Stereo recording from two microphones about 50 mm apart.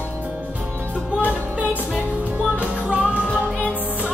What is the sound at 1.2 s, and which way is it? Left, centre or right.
Music, right.